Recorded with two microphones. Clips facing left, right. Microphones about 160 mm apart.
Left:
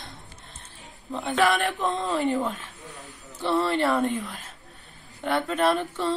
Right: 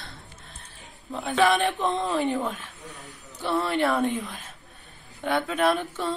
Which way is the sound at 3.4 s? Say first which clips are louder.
Left 1 dB; 15° right (ahead or behind).